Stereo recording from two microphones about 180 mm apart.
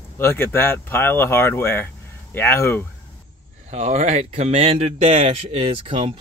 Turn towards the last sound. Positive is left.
turn(degrees=-30)  # may be behind; listen again after turning